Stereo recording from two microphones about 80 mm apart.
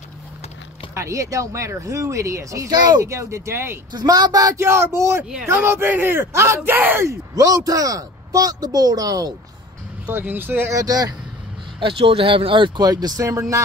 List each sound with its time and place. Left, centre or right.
0.9 s speech: right
3.9 s speech: right
4.6 s speech: right
6.7 s speech: right
7.1 s speech: right
10.0 s speech: right
10.7 s speech: right
11.8 s speech: right